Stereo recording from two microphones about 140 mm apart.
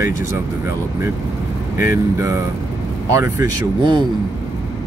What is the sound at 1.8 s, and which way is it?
Speech, 20° right (ahead or behind).